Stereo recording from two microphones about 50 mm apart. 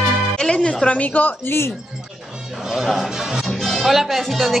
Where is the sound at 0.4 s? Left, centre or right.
Centre; by 1.5 s left.